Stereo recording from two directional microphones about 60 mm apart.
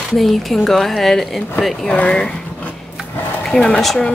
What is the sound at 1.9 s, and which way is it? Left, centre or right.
Speech, left.